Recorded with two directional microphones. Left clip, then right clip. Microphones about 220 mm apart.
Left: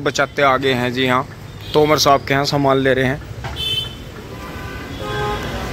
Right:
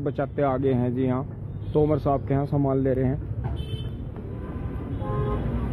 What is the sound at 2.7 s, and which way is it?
Speech, 10° left (ahead or behind).